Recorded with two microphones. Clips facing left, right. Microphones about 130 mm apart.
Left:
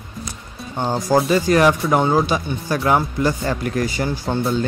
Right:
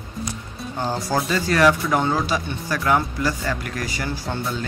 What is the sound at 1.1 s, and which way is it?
Speech, 25° left (ahead or behind).